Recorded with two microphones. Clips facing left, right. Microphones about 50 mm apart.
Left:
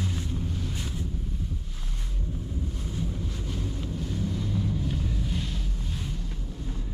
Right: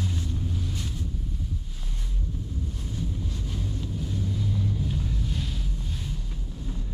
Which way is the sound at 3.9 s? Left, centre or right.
Centre.